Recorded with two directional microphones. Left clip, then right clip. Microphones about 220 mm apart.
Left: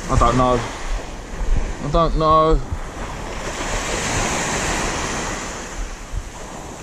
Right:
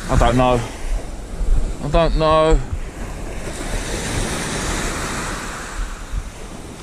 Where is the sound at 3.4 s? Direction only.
20° left (ahead or behind).